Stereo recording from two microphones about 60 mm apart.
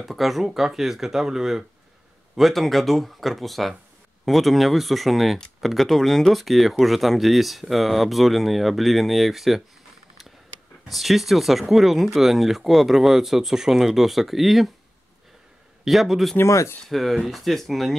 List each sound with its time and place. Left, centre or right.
0.0 s speech: centre
10.9 s speech: centre
15.8 s speech: centre
16.3 s speech: left
16.9 s speech: centre